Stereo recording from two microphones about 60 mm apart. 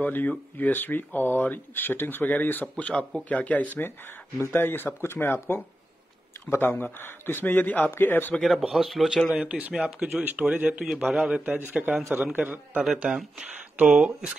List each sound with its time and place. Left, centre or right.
0.0 s speech: left
8.4 s speech: centre
9.3 s a man's voice: centre
10.9 s speech: centre
11.7 s a man's voice: right
13.0 s speech: centre